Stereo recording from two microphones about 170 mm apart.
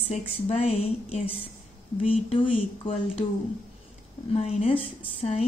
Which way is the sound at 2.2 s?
30° left (ahead or behind).